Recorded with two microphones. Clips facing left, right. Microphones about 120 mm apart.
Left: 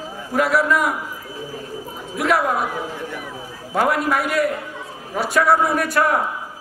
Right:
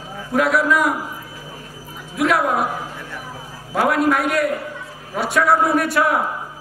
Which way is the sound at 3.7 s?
Centre (ahead or behind).